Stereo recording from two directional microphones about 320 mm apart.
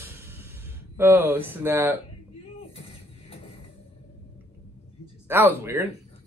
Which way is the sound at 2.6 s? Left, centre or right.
Centre.